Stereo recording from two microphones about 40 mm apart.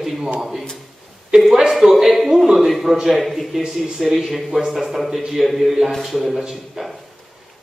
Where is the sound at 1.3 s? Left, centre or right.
Right.